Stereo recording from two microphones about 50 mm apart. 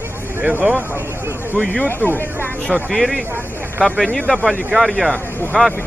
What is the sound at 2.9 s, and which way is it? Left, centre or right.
Speech, centre.